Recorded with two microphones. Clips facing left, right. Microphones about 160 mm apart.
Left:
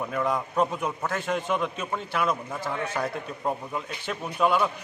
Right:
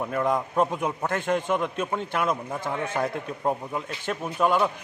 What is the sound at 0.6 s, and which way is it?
A man's voice, 10° right (ahead or behind).